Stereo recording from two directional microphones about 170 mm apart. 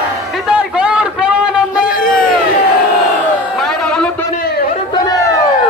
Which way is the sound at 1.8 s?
55° left (ahead or behind).